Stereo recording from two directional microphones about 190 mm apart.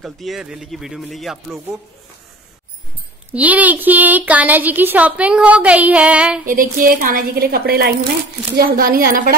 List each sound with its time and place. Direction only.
0.0 s speech: centre (ahead or behind)
3.3 s speech: 10° right (ahead or behind)
6.4 s a woman's voice: 45° right (ahead or behind)